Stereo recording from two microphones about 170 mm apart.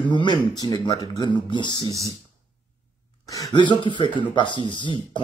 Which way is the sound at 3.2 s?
20° left (ahead or behind).